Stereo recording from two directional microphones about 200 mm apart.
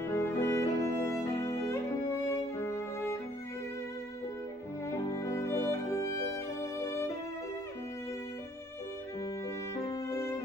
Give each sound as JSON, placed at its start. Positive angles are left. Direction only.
{"t": 0.0, "sound": "music", "side_deg": 15}
{"t": 4.8, "sound": "music", "side_deg": 15}
{"t": 9.9, "sound": "violin", "side_deg": 15}